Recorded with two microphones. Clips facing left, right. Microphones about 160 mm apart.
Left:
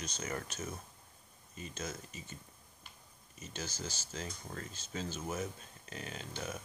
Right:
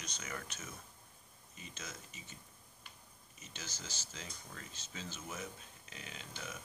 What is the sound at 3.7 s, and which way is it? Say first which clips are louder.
Speech: left 7 dB; 40° left (ahead or behind).